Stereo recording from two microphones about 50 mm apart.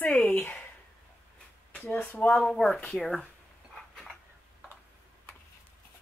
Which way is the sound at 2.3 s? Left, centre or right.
Centre.